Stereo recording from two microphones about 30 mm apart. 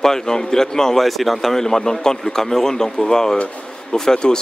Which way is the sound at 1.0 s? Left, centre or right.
Centre.